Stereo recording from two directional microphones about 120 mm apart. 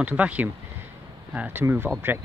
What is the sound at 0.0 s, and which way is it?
Speech, 10° right (ahead or behind).